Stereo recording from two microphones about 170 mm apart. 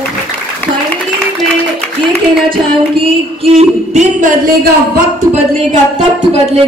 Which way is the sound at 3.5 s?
45° right (ahead or behind).